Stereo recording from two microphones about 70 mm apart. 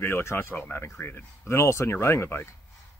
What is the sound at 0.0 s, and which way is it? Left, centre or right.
A man's voice, left.